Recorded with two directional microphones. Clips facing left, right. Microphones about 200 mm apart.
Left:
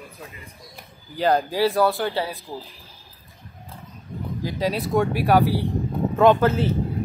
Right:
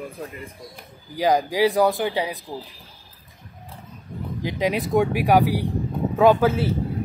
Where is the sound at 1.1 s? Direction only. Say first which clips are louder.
Right 1 dB; 10° right (ahead or behind).